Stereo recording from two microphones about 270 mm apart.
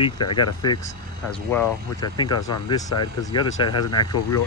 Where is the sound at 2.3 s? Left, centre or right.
Left.